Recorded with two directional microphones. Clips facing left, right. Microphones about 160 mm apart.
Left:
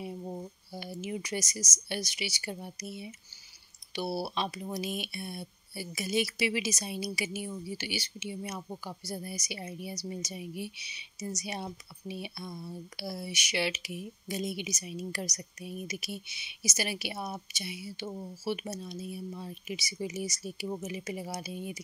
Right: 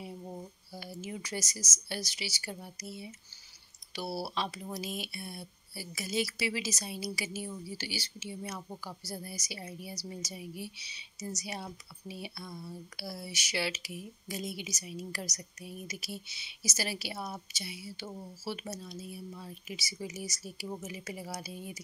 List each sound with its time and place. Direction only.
0.0 s speech: 15° left (ahead or behind)
20.6 s a woman's voice: 10° left (ahead or behind)
20.9 s speech: 20° left (ahead or behind)